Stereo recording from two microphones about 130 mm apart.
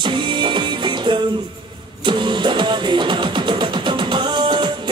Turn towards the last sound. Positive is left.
turn(degrees=-35)  # may be behind; listen again after turning